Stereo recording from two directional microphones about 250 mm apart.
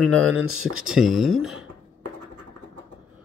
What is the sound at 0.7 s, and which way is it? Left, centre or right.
Speech, centre.